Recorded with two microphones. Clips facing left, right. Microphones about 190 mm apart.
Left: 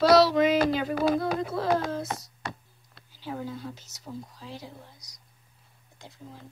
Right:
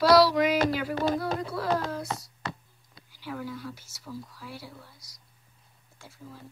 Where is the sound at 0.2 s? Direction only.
25° left (ahead or behind).